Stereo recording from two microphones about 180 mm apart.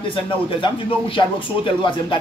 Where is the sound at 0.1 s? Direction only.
30° left (ahead or behind).